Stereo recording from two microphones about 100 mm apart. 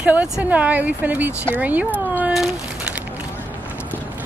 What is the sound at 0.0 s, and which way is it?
Speech, 15° right (ahead or behind).